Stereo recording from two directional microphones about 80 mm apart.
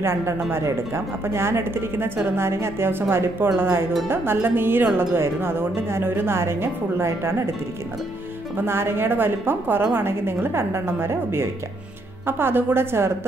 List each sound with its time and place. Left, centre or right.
0.0 s a woman's voice: right
8.6 s a woman's voice: right